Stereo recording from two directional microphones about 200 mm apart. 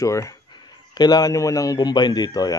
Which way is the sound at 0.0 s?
15° left (ahead or behind).